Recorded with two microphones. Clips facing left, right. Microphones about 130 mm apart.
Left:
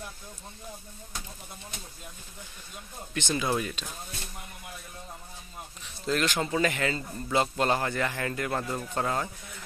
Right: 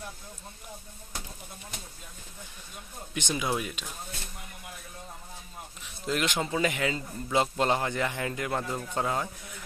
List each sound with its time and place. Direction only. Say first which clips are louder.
3.2 s a man's voice: left 2 dB; 15° right (ahead or behind)
6.0 s a man's voice: left 1 dB; 20° right (ahead or behind)